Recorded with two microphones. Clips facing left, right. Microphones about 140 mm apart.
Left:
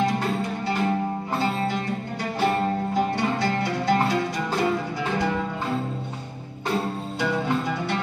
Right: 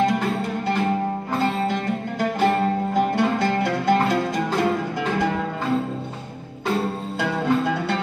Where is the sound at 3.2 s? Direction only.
55° right (ahead or behind).